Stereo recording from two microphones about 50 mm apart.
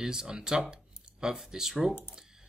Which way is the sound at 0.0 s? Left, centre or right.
Centre.